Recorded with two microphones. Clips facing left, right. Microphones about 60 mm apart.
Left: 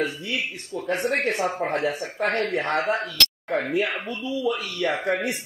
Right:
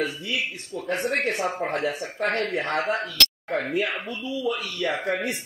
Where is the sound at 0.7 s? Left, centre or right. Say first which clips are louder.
Left 3 dB; right.